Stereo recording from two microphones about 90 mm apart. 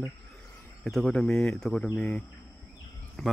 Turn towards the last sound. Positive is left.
turn(degrees=0)  # may be behind; listen again after turning